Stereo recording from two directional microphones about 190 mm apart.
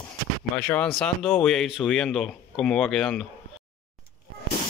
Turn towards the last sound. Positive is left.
turn(degrees=5)  # may be behind; listen again after turning